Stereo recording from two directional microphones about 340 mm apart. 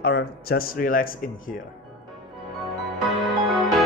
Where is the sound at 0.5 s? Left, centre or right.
Left.